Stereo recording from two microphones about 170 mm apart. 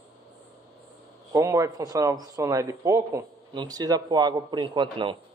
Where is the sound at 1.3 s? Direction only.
20° right (ahead or behind).